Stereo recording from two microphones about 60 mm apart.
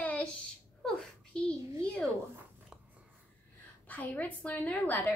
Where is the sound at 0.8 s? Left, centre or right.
Centre.